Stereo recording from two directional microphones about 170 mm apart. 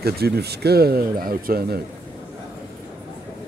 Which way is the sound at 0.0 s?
70° right (ahead or behind).